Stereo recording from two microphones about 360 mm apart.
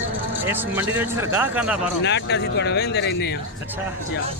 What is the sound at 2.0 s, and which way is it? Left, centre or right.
Speech, left.